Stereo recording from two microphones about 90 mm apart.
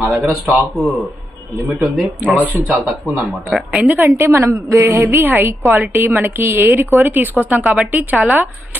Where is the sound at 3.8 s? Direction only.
25° right (ahead or behind).